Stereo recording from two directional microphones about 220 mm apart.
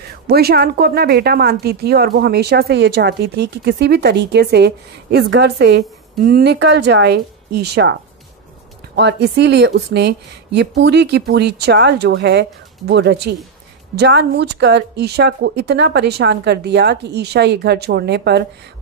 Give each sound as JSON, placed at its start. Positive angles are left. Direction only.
{"t": 0.3, "sound": "speech", "side_deg": -45}